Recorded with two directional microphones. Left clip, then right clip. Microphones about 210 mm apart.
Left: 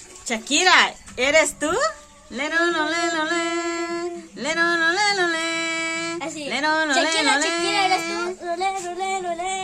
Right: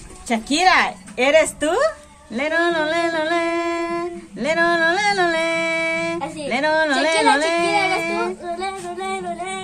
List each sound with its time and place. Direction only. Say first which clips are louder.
0.3 s a woman's voice: right 1 dB; 5° left (ahead or behind)
6.1 s music: right 3 dB; 35° left (ahead or behind)
6.5 s a sound: right 2 dB; 5° left (ahead or behind)
8.5 s singing: left 2 dB; 40° left (ahead or behind)